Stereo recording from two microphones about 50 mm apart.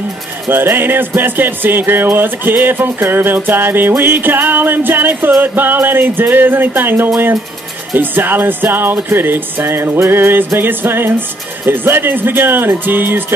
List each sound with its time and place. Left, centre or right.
0.5 s speech: right